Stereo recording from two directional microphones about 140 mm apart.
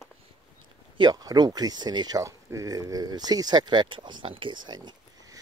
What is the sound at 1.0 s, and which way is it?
Speech, 30° right (ahead or behind).